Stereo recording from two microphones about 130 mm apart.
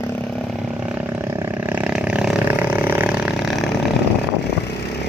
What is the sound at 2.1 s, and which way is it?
Vehicle, 10° right (ahead or behind).